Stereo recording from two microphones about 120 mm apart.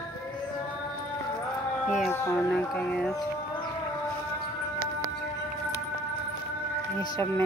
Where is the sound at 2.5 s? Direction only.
5° left (ahead or behind).